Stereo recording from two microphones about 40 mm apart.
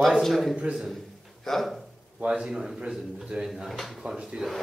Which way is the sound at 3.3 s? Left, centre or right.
Right.